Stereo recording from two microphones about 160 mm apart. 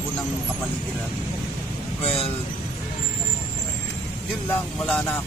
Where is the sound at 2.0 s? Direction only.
40° left (ahead or behind).